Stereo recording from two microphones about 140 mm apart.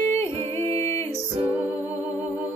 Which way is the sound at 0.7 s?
20° left (ahead or behind).